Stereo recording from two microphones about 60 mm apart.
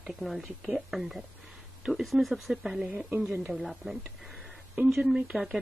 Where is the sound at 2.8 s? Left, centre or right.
Right.